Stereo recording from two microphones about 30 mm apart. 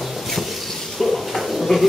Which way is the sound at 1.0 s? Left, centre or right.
Centre.